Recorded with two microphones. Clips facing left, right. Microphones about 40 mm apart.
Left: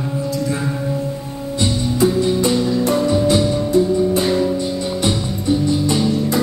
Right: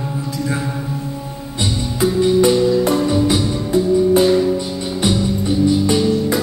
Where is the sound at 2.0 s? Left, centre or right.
Right.